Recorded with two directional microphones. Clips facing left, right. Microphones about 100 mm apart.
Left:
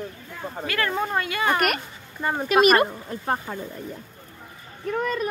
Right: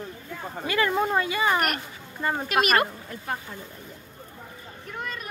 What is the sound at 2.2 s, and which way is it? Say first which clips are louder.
Speech: left 2 dB; 15° left (ahead or behind).